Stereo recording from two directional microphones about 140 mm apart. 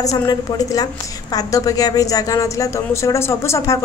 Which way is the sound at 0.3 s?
30° left (ahead or behind).